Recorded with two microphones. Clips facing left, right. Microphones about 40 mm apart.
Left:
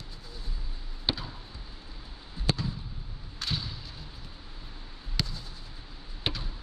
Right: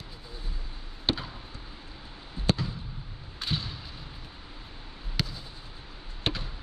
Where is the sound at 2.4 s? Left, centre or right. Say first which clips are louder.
Right 3 dB; centre.